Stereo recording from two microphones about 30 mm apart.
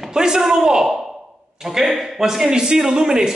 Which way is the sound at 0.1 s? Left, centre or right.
Right.